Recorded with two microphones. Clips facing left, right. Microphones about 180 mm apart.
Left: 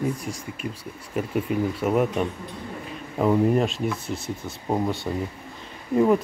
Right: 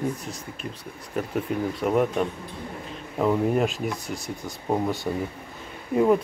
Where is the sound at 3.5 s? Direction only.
Centre (ahead or behind).